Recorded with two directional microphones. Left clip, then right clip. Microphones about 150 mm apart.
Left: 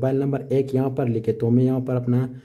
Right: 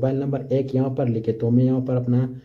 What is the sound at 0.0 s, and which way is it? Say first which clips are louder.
Speech: left 1 dB; 40° left (ahead or behind).